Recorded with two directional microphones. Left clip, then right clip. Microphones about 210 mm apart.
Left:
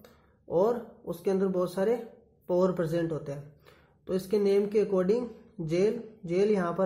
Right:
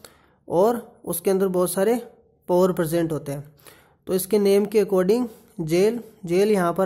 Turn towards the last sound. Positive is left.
turn(degrees=-40)  # may be behind; listen again after turning